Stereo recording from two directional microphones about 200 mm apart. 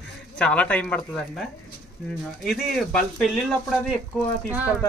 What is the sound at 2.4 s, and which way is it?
Speech, centre (ahead or behind).